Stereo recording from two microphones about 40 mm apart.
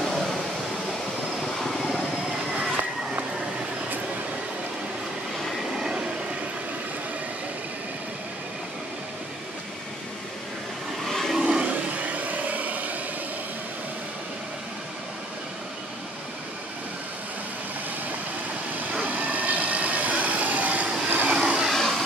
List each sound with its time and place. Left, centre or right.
0.0 s a sound: centre
1.6 s vehicle: centre
11.1 s vehicle: centre
11.3 s vehicle: centre
11.6 s vehicle: right
18.9 s vehicle: right
21.3 s vehicle: right
21.7 s a sound: centre